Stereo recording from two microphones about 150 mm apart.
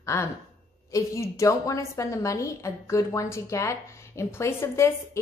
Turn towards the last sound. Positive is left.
turn(degrees=20)  # may be behind; listen again after turning